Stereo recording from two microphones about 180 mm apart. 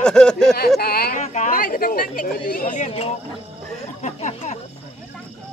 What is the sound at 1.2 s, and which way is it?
Speech, 40° left (ahead or behind).